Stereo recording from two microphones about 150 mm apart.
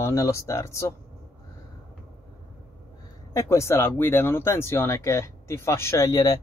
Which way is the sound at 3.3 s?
20° left (ahead or behind).